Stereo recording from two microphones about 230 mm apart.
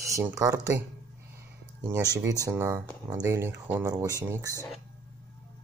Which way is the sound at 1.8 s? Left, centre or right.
Centre.